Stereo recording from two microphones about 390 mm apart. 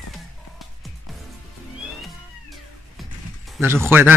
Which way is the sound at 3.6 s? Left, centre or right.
Centre.